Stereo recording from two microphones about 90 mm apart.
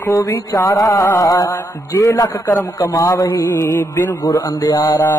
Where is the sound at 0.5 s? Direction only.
40° left (ahead or behind).